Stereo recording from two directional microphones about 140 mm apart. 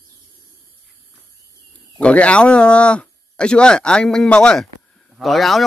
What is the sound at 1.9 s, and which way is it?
A man's voice, 10° left (ahead or behind).